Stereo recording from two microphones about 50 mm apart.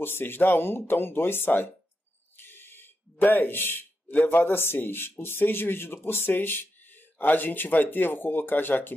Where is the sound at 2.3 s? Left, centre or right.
Left.